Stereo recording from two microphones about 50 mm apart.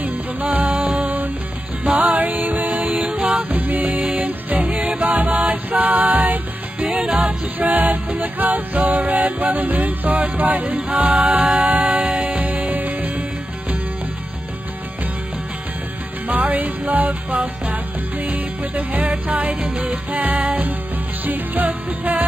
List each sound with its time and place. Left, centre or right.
0.0 s music: right
0.7 s music: centre
0.9 s music: right
3.4 s music: right
6.9 s music: centre
7.5 s music: right
11.0 s music: centre
11.3 s music: right
16.3 s music: right
17.3 s music: centre
18.2 s music: right